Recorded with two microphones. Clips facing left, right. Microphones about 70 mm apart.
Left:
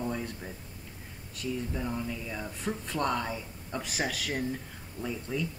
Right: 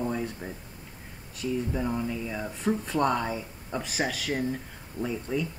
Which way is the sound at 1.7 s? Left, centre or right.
Centre.